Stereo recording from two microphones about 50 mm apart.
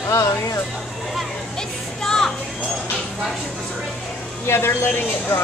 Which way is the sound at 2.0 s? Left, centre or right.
Centre.